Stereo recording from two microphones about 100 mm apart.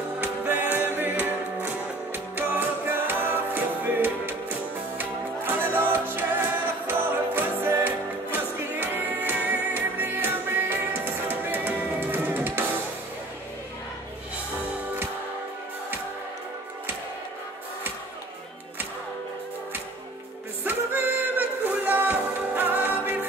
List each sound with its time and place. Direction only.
0.2 s music: 20° right (ahead or behind)
20.6 s music: 20° right (ahead or behind)